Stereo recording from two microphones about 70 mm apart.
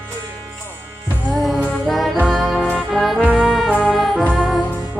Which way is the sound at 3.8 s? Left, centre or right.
Centre.